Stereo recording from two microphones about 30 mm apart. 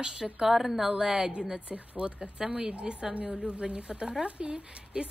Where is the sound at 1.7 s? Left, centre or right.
Right.